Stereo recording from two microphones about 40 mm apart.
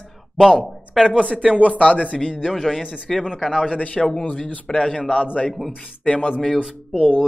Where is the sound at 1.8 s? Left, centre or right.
Left.